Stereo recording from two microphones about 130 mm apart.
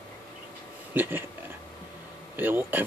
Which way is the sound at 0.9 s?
15° right (ahead or behind).